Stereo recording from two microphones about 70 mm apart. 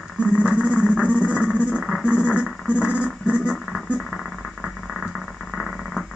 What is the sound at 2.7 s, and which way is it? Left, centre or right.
Dog, centre.